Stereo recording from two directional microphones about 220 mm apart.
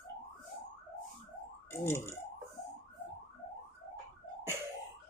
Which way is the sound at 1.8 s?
10° left (ahead or behind).